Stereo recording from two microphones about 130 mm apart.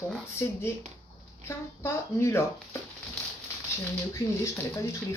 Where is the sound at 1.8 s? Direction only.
20° left (ahead or behind).